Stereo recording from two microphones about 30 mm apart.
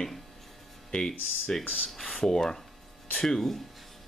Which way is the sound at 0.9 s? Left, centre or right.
Left.